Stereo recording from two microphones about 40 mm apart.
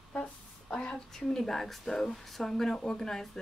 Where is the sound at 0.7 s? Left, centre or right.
Left.